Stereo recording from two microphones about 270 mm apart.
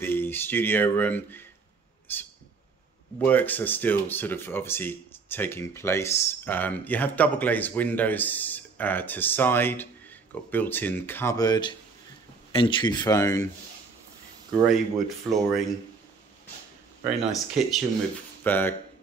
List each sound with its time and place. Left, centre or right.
0.0 s speech: centre
3.2 s speech: centre
14.7 s speech: centre
17.0 s speech: centre